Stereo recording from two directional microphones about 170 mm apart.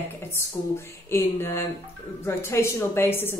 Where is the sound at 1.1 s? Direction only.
15° left (ahead or behind).